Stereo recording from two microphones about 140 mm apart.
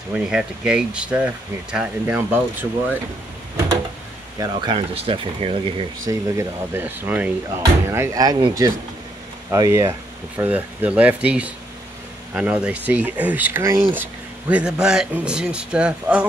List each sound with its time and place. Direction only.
0.1 s speech: 5° right (ahead or behind)
4.4 s speech: 35° right (ahead or behind)
6.0 s speech: 20° right (ahead or behind)
14.5 s speech: 5° right (ahead or behind)